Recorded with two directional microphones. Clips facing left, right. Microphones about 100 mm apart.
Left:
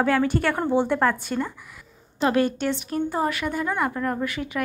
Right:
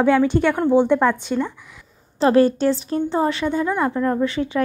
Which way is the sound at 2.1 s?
35° right (ahead or behind).